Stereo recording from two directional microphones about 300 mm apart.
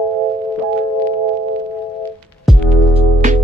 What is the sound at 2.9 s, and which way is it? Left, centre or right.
Music, right.